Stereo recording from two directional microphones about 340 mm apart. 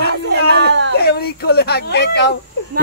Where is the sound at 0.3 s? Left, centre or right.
Right.